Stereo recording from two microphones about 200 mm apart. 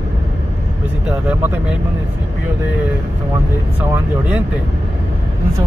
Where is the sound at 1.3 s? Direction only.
5° right (ahead or behind).